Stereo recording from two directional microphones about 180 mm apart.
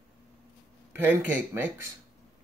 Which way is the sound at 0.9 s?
10° right (ahead or behind).